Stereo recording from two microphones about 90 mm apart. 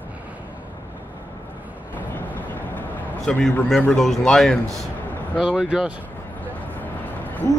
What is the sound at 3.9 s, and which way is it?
Speech, 5° left (ahead or behind).